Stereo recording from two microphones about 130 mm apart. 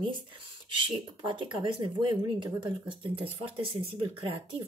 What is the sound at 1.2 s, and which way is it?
A woman's voice, 40° right (ahead or behind).